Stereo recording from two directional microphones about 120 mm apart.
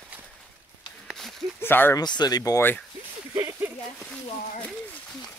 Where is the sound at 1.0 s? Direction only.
Centre (ahead or behind).